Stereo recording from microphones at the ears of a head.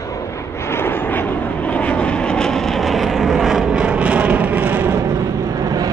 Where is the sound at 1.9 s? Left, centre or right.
Right.